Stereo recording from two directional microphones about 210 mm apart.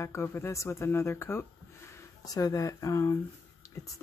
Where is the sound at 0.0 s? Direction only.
10° left (ahead or behind).